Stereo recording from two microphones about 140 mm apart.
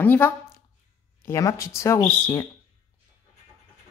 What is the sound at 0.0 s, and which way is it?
Speech, 15° left (ahead or behind).